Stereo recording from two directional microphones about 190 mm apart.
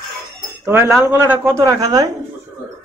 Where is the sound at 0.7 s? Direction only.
15° right (ahead or behind).